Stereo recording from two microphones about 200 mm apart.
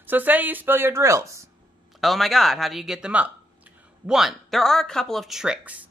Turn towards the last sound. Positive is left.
turn(degrees=-5)  # may be behind; listen again after turning